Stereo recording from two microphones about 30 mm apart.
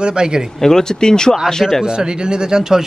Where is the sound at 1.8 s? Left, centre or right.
Right.